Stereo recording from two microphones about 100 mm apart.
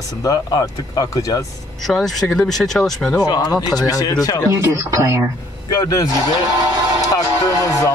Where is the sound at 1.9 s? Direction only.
Centre (ahead or behind).